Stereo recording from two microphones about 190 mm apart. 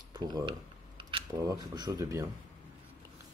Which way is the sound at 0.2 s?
20° right (ahead or behind).